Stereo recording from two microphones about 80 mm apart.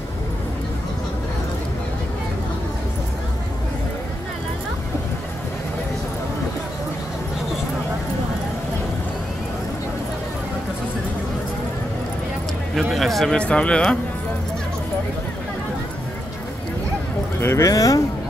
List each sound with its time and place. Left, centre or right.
12.9 s speech: centre
17.4 s speech: left
17.6 s speech: left